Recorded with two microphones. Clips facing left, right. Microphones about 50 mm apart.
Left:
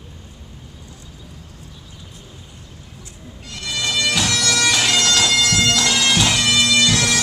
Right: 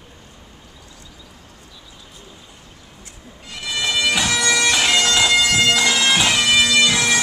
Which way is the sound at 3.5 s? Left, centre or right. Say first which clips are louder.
Right 1 dB; centre.